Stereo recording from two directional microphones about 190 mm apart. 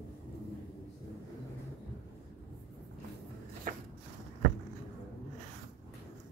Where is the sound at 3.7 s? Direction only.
45° right (ahead or behind).